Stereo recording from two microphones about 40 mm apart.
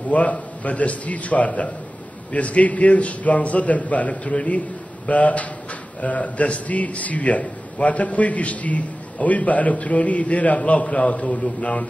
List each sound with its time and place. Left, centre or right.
0.1 s a man's voice: left